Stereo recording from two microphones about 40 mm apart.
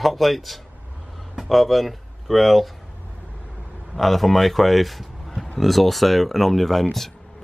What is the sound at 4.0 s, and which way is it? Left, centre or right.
Speech, centre.